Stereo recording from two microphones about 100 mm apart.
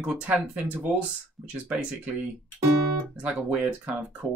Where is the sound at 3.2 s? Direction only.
15° right (ahead or behind).